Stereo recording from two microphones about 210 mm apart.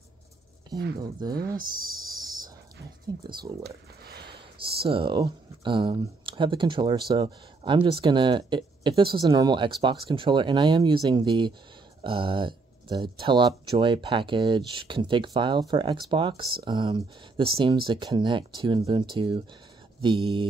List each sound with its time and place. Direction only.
1.3 s speech: 45° right (ahead or behind)
3.3 s speech: 45° right (ahead or behind)
4.6 s speech: 25° right (ahead or behind)